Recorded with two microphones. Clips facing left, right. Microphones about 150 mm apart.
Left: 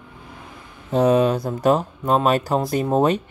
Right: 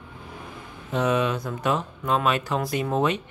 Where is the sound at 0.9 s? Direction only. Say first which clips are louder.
Left 7 dB; 35° left (ahead or behind).